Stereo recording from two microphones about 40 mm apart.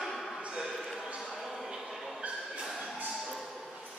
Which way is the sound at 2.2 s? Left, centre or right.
Right.